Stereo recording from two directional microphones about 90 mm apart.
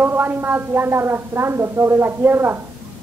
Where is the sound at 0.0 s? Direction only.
20° right (ahead or behind).